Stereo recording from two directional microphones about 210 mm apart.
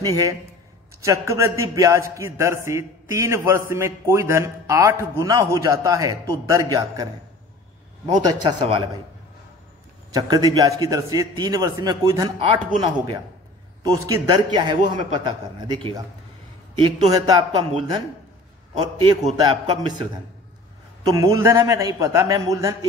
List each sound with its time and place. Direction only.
0.0 s a man's voice: 20° right (ahead or behind)
8.5 s a man's voice: 30° right (ahead or behind)
10.1 s a man's voice: 20° right (ahead or behind)
13.8 s a man's voice: 15° right (ahead or behind)
21.1 s a man's voice: 15° right (ahead or behind)